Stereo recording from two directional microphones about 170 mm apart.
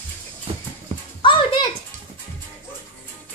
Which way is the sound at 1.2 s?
30° left (ahead or behind).